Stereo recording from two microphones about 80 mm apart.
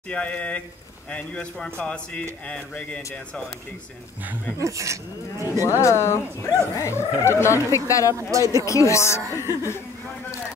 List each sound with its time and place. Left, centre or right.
0.1 s speech: centre
4.6 s speech: right
5.6 s speech: left
8.1 s speech: right
8.6 s speech: left